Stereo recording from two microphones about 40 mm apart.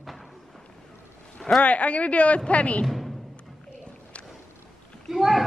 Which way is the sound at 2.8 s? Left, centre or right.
Centre.